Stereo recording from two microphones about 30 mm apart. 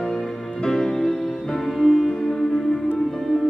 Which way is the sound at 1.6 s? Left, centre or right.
Centre.